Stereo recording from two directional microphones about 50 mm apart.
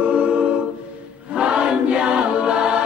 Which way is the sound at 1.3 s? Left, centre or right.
Centre.